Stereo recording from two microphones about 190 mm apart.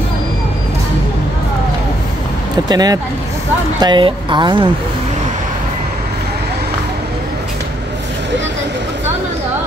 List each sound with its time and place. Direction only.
2.7 s speech: 20° right (ahead or behind)